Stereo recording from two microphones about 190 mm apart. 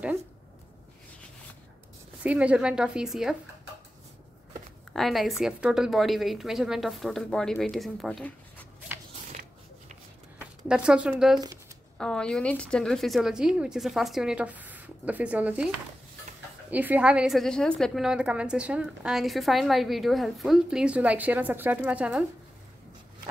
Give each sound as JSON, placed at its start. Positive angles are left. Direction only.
{"t": 2.2, "sound": "a woman's voice", "side_deg": -5}
{"t": 4.9, "sound": "a woman's voice", "side_deg": 0}
{"t": 9.3, "sound": "biting", "side_deg": -40}
{"t": 10.7, "sound": "a woman's voice", "side_deg": -5}
{"t": 16.7, "sound": "a woman's voice", "side_deg": -10}